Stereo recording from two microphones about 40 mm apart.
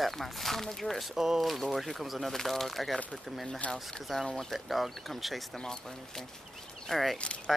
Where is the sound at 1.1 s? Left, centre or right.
Centre.